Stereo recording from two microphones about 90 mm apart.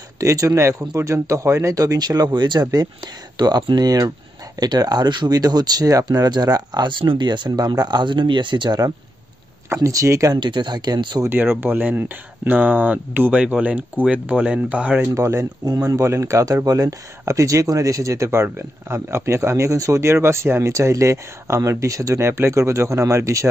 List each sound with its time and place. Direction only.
0.2 s speech: 35° right (ahead or behind); by 2.6 s 60° right (ahead or behind)
2.6 s speech: 45° right (ahead or behind)
9.8 s speech: 35° right (ahead or behind)
10.4 s speech: 60° right (ahead or behind)
11.2 s speech: 25° right (ahead or behind)
15.1 s speech: 35° right (ahead or behind)